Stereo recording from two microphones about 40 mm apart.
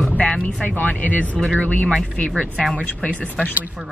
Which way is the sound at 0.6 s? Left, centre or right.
Left.